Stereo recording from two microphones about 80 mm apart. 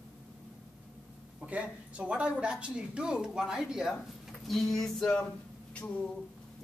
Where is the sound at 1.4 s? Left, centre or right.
Centre.